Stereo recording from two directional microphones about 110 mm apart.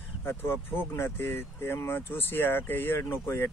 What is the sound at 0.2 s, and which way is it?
Speech, 20° left (ahead or behind).